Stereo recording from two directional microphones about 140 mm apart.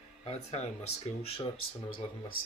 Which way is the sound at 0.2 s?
50° left (ahead or behind).